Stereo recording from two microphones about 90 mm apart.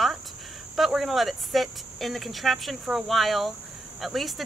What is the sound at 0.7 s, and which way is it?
Speech, centre (ahead or behind).